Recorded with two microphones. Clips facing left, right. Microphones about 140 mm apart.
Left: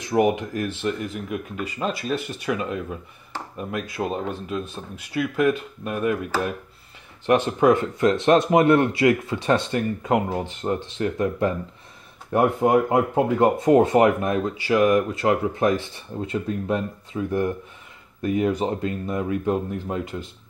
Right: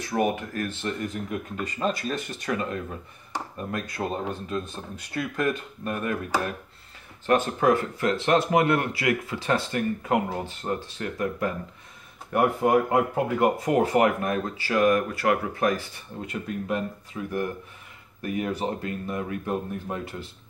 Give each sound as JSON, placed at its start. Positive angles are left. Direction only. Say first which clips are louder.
{"t": 0.0, "sound": "speech", "louder": "left 5 dB", "side_deg": 15}
{"t": 5.1, "sound": "speech", "louder": "left 6 dB", "side_deg": 10}
{"t": 7.2, "sound": "speech", "louder": "left 4 dB", "side_deg": 20}